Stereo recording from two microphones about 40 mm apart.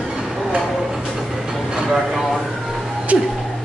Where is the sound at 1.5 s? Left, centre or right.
Centre.